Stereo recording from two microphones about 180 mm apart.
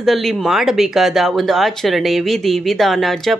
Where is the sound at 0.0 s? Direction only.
Centre (ahead or behind).